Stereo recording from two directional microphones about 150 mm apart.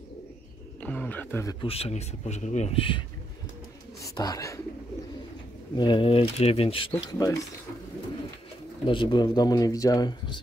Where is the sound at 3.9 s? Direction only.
25° left (ahead or behind).